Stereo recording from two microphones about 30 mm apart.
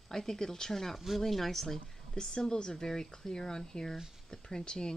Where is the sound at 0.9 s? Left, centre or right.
Centre.